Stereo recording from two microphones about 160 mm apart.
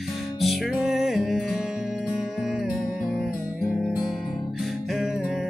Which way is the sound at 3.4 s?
15° left (ahead or behind).